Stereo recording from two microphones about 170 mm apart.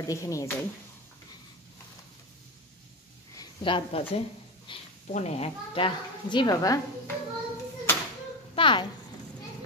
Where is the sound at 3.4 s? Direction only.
30° left (ahead or behind).